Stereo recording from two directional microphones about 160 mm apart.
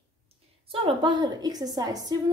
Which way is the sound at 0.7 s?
35° right (ahead or behind).